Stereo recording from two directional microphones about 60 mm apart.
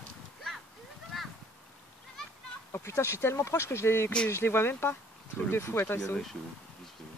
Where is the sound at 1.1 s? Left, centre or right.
Centre.